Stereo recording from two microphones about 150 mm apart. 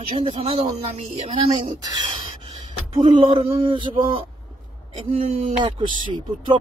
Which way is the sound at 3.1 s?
40° right (ahead or behind).